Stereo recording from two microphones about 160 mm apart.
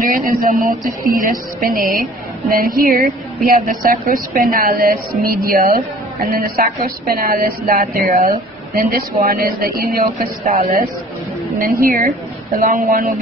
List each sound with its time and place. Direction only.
0.0 s a woman's voice: 65° right (ahead or behind)